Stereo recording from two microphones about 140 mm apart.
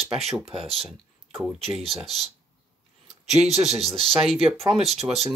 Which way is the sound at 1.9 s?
Centre (ahead or behind).